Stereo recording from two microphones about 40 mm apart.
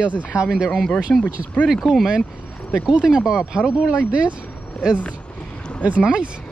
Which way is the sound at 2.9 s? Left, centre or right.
Centre.